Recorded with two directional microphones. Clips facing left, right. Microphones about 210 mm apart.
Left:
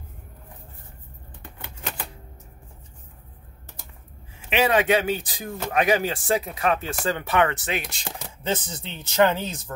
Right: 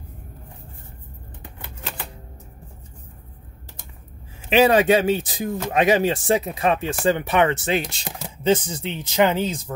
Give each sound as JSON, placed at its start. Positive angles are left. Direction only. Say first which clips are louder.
{"t": 4.5, "sound": "speech", "louder": "right 5 dB", "side_deg": -35}
{"t": 8.5, "sound": "speech", "louder": "right 8 dB", "side_deg": -15}